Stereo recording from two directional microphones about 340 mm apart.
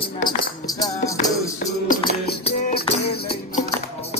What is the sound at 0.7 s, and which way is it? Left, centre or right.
Music, centre.